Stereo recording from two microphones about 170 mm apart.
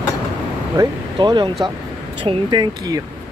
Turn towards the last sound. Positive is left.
turn(degrees=-25)  # may be behind; listen again after turning